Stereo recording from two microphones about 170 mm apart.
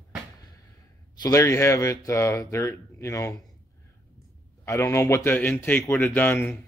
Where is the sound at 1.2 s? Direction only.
15° left (ahead or behind).